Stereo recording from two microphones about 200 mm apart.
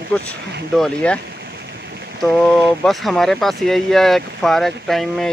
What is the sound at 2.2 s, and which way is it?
Speech, centre (ahead or behind).